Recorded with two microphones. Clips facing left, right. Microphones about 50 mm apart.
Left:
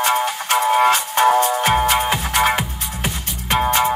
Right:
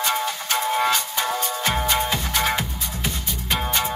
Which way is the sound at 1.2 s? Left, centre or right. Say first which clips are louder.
Left 10 dB; left.